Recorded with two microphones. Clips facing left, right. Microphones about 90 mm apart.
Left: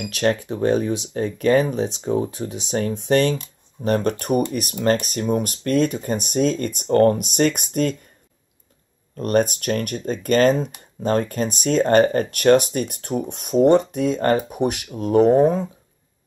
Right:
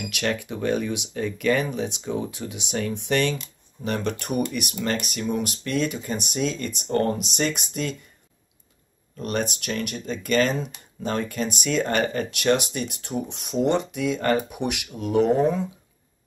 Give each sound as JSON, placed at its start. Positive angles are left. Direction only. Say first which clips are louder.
{"t": 0.0, "sound": "speech", "louder": "left 6 dB", "side_deg": 35}
{"t": 9.1, "sound": "speech", "louder": "left 8 dB", "side_deg": 45}